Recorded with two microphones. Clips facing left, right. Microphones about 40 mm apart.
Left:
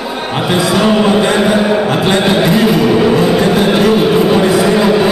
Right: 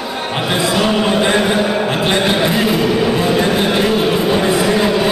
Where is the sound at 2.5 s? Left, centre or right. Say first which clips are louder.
Left 5 dB; left.